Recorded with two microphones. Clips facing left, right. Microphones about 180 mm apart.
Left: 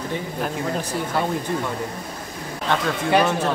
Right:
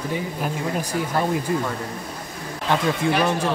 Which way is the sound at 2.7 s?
10° right (ahead or behind).